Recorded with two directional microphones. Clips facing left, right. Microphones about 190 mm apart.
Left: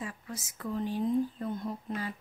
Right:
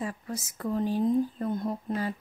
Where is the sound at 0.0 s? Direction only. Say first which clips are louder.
Right 6 dB; 40° right (ahead or behind).